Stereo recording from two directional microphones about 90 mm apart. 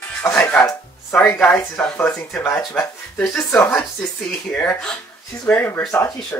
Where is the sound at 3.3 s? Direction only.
25° left (ahead or behind).